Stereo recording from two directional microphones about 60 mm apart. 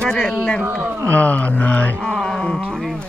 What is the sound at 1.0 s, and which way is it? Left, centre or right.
Speech, left.